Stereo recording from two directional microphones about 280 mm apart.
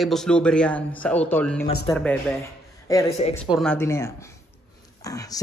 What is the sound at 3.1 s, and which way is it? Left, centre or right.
Speech, left.